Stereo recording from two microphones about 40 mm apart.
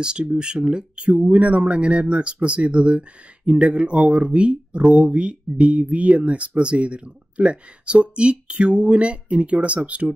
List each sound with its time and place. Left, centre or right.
0.0 s speech: right